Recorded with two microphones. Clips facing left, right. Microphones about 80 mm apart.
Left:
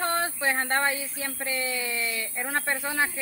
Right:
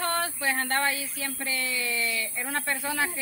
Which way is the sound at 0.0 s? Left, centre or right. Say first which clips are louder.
Left 1 dB; left.